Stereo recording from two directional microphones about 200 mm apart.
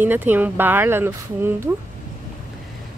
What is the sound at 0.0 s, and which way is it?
Speech, 10° right (ahead or behind).